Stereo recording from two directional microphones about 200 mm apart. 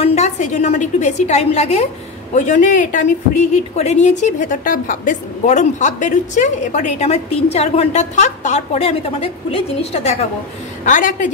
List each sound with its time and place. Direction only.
0.0 s a woman's voice: 35° left (ahead or behind)
10.9 s a woman's voice: 40° left (ahead or behind)